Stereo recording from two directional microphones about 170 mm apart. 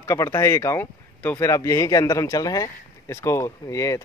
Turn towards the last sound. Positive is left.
turn(degrees=20)  # may be behind; listen again after turning